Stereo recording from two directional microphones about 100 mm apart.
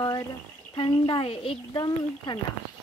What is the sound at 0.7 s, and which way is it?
Speech, 50° left (ahead or behind).